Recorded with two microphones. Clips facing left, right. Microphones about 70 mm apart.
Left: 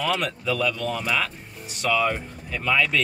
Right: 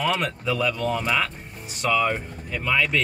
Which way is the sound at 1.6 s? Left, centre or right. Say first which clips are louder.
Right 1 dB; centre.